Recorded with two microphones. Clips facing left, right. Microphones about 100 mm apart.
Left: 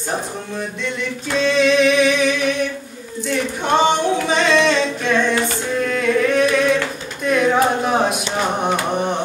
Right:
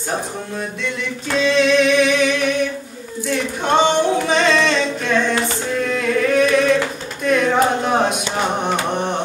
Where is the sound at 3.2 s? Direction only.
Centre (ahead or behind).